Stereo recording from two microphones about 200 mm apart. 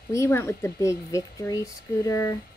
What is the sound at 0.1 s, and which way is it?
Speech, 15° left (ahead or behind).